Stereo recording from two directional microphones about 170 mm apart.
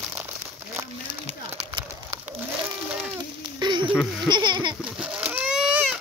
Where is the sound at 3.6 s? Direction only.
25° right (ahead or behind).